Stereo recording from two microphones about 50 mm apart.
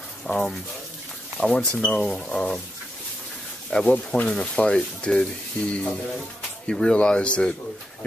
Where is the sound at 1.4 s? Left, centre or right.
Centre.